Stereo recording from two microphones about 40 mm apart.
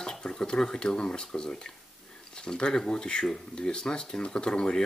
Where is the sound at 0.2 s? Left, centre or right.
Centre.